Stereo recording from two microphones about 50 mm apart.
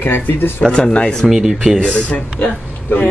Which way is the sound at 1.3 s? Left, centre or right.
Centre.